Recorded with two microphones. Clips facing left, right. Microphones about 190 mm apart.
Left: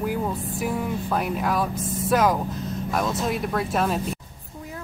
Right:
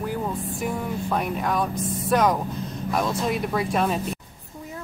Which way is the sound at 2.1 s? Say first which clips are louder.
Even; 5° left (ahead or behind).